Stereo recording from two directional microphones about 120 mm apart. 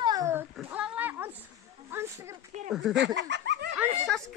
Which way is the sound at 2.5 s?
80° right.